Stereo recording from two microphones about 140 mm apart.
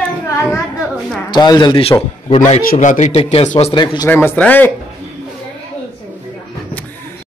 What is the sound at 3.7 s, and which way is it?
Speech, 30° left (ahead or behind).